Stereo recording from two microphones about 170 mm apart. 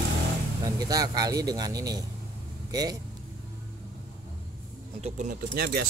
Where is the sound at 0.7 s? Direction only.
20° right (ahead or behind).